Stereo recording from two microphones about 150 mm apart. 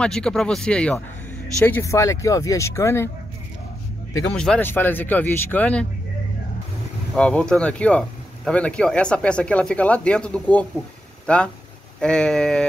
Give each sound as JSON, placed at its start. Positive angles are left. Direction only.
{"t": 0.0, "sound": "speech", "side_deg": 5}
{"t": 4.3, "sound": "speech", "side_deg": 5}
{"t": 7.2, "sound": "speech", "side_deg": 5}